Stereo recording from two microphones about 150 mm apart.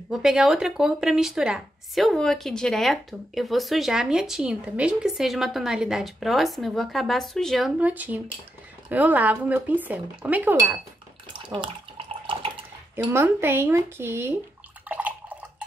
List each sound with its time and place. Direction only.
0.1 s speech: 5° right (ahead or behind)
7.8 s speech: 10° right (ahead or behind)
11.3 s bathtub: 35° right (ahead or behind)
12.3 s water: 35° right (ahead or behind)
12.9 s speech: 15° right (ahead or behind)
14.9 s bathtub: 10° right (ahead or behind)